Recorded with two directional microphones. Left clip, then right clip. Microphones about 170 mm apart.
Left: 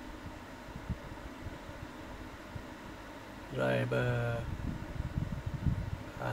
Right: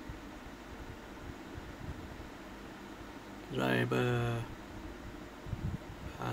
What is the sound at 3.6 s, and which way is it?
Speech, 40° right (ahead or behind).